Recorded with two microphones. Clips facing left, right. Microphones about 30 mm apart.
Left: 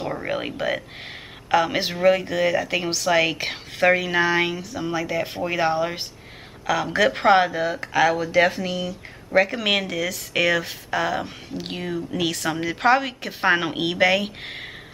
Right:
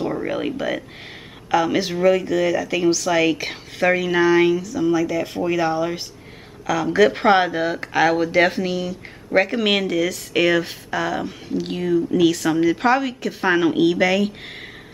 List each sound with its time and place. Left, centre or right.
0.0 s a sound: centre
1.5 s a woman's voice: centre
7.0 s speech: centre
10.9 s a woman's voice: centre